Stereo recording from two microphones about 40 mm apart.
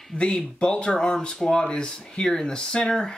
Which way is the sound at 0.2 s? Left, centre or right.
Left.